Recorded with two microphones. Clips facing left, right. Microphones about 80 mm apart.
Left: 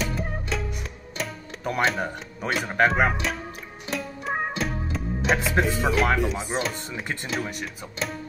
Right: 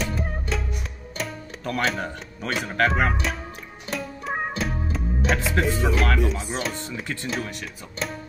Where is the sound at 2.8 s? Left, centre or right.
Centre.